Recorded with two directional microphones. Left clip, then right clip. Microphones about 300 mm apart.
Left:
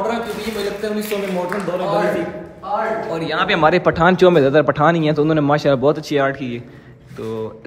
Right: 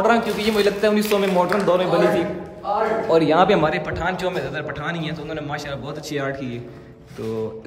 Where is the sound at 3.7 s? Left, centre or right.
Centre.